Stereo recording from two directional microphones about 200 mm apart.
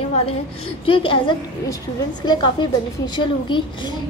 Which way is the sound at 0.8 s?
25° left (ahead or behind).